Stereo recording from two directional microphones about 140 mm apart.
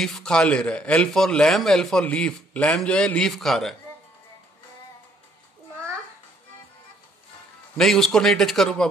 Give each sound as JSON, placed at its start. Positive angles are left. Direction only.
{"t": 0.0, "sound": "a man's voice", "side_deg": 5}
{"t": 7.7, "sound": "a man's voice", "side_deg": 0}